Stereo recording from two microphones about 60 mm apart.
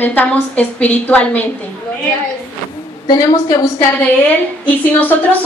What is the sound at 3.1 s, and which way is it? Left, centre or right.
Speech, left.